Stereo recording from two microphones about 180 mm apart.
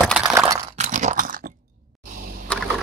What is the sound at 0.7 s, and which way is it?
Chewing, 40° right (ahead or behind).